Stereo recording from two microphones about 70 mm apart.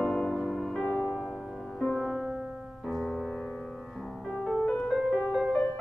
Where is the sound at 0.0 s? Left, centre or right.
Centre.